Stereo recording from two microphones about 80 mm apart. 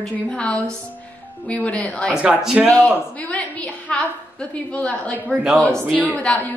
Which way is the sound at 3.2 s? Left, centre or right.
Centre.